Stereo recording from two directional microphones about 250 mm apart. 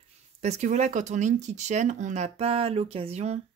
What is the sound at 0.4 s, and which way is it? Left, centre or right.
Speech, right.